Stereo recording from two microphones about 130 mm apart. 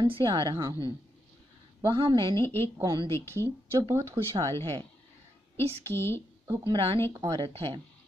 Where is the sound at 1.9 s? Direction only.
40° right (ahead or behind).